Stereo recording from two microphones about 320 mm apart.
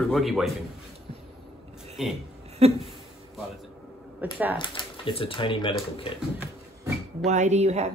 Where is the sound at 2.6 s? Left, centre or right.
Centre.